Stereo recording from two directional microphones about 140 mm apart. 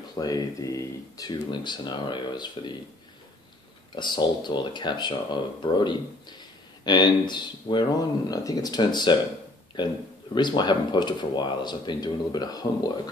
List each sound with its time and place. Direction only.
0.1 s speech: 25° left (ahead or behind)
3.9 s speech: 30° left (ahead or behind)
10.3 s speech: 30° left (ahead or behind)